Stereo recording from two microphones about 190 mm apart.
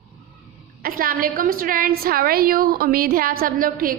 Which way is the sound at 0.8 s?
50° right (ahead or behind).